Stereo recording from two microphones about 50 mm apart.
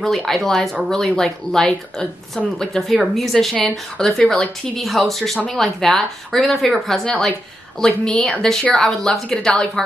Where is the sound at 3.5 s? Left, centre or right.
Centre.